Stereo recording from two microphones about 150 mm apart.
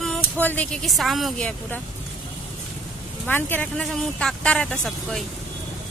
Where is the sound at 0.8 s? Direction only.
Centre (ahead or behind).